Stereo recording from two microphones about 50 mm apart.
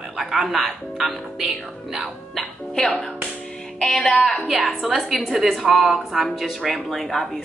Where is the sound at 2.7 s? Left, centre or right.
Centre.